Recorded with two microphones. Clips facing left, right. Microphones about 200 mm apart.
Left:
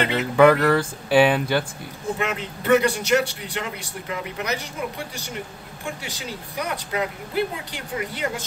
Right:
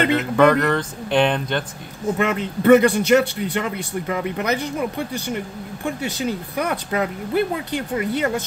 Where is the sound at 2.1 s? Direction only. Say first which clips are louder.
Right 6 dB; 55° right (ahead or behind).